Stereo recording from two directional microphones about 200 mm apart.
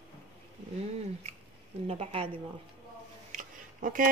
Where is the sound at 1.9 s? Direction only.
30° right (ahead or behind).